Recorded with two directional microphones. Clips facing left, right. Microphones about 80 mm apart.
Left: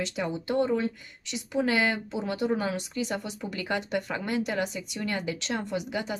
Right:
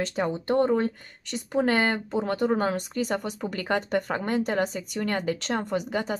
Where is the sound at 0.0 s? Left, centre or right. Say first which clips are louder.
Right 4 dB; right.